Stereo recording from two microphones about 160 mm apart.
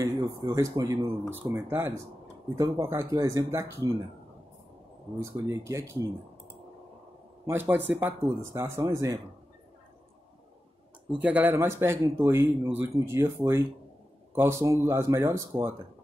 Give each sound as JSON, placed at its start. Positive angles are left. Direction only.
{"t": 0.0, "sound": "speech", "side_deg": -20}
{"t": 5.2, "sound": "speech", "side_deg": -20}
{"t": 7.4, "sound": "speech", "side_deg": -15}
{"t": 11.1, "sound": "speech", "side_deg": -10}